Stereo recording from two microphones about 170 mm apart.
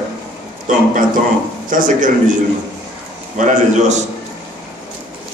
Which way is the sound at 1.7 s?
50° right (ahead or behind).